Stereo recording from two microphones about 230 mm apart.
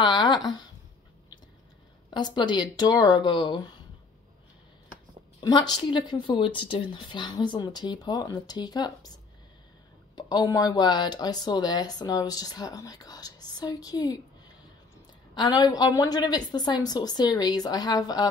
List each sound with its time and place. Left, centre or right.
0.0 s a sound: centre
2.1 s a woman's voice: centre
5.4 s a woman's voice: centre
10.1 s speech: centre
15.3 s speech: centre